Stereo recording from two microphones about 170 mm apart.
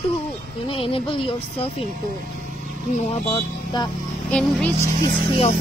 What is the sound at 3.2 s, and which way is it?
Speech, 30° left (ahead or behind).